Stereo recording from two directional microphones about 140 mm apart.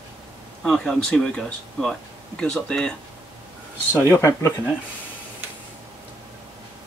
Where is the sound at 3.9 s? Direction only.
20° left (ahead or behind).